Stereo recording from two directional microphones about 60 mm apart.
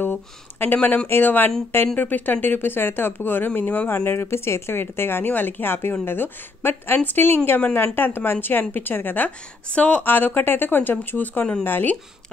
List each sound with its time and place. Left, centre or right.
0.0 s a sound: left
0.8 s speech: left
9.7 s speech: centre
10.0 s speech: left